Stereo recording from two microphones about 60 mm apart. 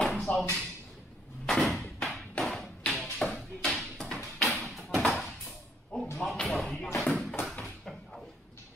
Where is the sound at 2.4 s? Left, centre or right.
Centre.